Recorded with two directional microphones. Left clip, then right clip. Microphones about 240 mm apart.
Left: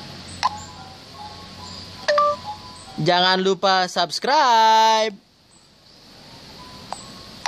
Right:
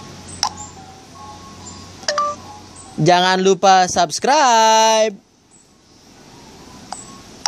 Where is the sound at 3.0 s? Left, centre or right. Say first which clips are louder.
Right 4 dB; centre.